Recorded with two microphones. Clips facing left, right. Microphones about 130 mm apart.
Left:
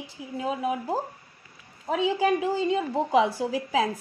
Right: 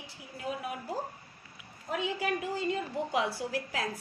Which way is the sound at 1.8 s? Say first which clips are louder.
Left 9 dB; 90° left.